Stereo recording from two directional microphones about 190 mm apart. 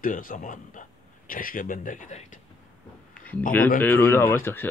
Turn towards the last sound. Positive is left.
turn(degrees=10)  # may be behind; listen again after turning